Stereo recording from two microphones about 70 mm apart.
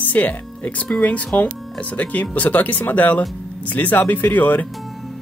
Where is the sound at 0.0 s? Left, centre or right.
Left.